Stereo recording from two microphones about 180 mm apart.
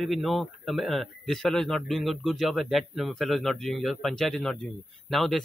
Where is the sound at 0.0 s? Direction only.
Centre (ahead or behind).